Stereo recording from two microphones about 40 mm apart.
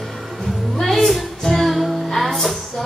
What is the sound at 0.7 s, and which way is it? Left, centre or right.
Music, centre.